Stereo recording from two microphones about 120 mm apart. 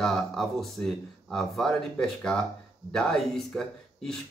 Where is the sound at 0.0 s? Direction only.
5° left (ahead or behind).